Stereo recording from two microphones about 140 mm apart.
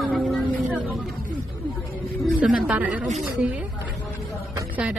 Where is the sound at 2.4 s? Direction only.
10° right (ahead or behind).